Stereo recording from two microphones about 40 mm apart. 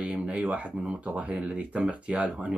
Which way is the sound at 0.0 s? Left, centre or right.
Right.